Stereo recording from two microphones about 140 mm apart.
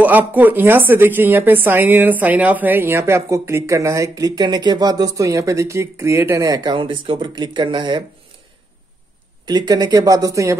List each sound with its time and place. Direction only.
0.0 s speech: 10° right (ahead or behind); by 8.0 s 35° right (ahead or behind)
9.5 s speech: 30° right (ahead or behind)